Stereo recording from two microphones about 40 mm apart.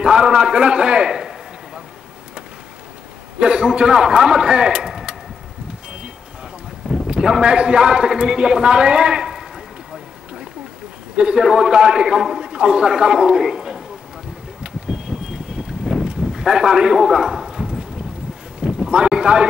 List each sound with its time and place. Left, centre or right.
0.0 s a man's voice: centre
3.3 s a man's voice: right
7.1 s a man's voice: centre
11.1 s a man's voice: right
14.6 s vehicle: centre
16.3 s a man's voice: centre
16.9 s clip-clop: centre
18.9 s speech: right